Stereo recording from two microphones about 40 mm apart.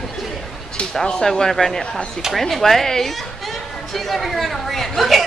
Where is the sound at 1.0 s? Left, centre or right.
Left.